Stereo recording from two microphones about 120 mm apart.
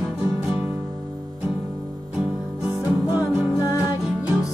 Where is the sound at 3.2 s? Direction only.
25° left (ahead or behind).